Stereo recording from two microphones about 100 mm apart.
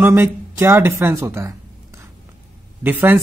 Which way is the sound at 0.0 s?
25° right (ahead or behind).